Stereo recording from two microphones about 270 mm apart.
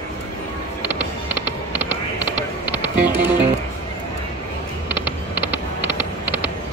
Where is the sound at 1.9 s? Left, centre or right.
Centre.